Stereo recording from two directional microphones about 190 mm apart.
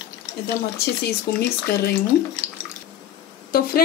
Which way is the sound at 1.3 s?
65° left (ahead or behind).